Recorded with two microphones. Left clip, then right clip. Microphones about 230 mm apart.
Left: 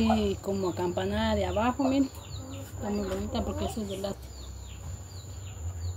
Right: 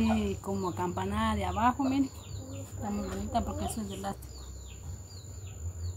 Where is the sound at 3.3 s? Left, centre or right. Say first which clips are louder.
Even; centre.